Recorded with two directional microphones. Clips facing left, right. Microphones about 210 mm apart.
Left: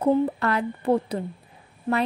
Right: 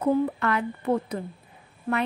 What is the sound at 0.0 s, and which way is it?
A woman's voice, 35° left (ahead or behind).